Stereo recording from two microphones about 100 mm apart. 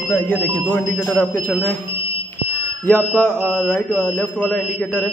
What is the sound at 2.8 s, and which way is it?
Speech, 10° left (ahead or behind).